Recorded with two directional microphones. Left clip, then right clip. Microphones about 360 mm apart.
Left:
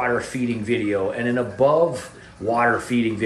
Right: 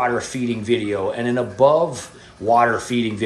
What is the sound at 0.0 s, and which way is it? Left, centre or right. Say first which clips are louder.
Speech: right 2 dB; centre.